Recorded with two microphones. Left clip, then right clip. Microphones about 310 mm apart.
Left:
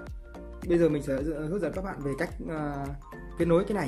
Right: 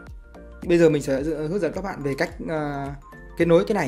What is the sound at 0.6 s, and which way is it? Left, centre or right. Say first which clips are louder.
Speech: right 7 dB; centre.